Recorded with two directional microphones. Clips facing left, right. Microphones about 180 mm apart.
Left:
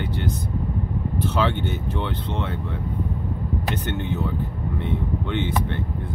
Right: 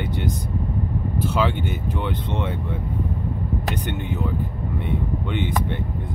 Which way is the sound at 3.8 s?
15° right (ahead or behind).